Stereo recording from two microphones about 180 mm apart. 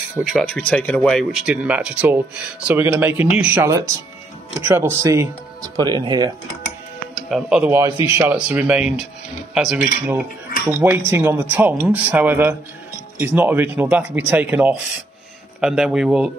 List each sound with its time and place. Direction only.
0.2 s speech: centre (ahead or behind); by 6.3 s 20° right (ahead or behind)
7.2 s speech: 5° right (ahead or behind)
7.7 s speech: 15° right (ahead or behind)